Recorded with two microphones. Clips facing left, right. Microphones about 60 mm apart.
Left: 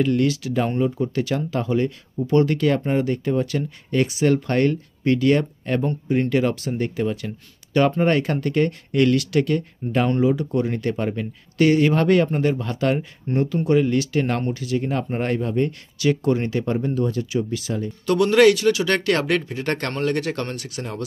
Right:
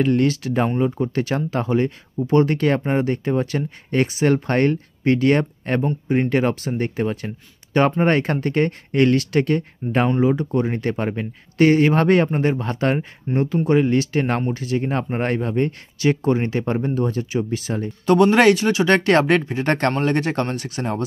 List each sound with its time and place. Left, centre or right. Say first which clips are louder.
0.0 s speech: right 2 dB; right
0.7 s speech: right 1 dB; right